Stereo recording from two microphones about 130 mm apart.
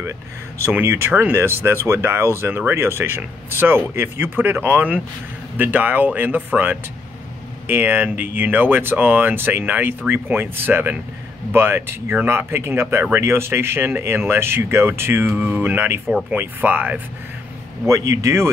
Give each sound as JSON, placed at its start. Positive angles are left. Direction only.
{"t": 0.6, "sound": "speech", "side_deg": -20}